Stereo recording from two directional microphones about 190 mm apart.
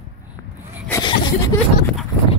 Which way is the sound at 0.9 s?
20° left (ahead or behind).